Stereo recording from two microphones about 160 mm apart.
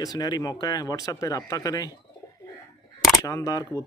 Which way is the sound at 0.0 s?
25° left (ahead or behind).